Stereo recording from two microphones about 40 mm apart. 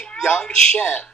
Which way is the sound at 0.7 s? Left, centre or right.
Left.